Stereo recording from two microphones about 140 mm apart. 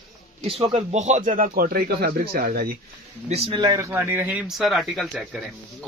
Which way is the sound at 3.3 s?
45° right (ahead or behind).